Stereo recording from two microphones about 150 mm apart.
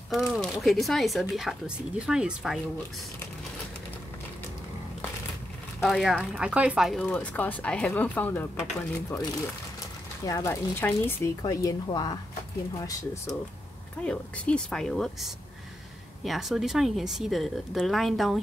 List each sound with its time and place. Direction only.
0.1 s speech: centre (ahead or behind)
5.8 s speech: centre (ahead or behind)
7.0 s speech: 10° left (ahead or behind)
10.2 s speech: 20° left (ahead or behind)
11.4 s speech: 25° left (ahead or behind)
14.0 s speech: 10° left (ahead or behind)